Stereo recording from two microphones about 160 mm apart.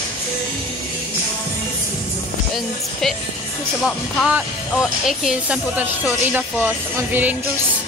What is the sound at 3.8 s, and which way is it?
Speech, 5° right (ahead or behind).